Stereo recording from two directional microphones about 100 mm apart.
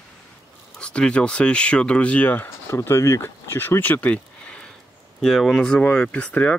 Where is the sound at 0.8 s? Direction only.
10° left (ahead or behind).